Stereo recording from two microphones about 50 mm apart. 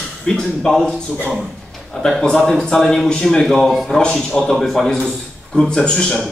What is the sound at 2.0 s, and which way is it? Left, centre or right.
A man's voice, centre.